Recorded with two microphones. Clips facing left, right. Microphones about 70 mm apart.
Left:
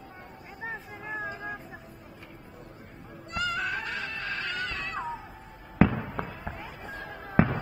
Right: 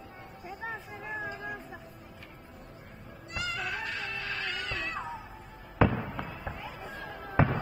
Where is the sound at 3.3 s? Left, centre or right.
Left.